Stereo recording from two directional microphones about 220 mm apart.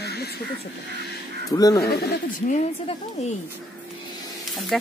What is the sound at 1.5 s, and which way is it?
Speech, 15° left (ahead or behind).